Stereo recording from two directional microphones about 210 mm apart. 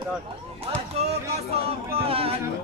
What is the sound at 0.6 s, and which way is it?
Music, 30° right (ahead or behind).